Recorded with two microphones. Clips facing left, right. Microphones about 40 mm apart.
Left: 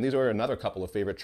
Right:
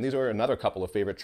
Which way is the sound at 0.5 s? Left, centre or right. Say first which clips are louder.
Right 3 dB; centre.